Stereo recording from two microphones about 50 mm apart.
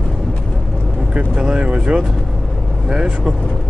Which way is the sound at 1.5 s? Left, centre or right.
Centre.